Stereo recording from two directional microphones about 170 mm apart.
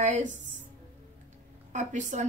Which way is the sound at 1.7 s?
45° right (ahead or behind).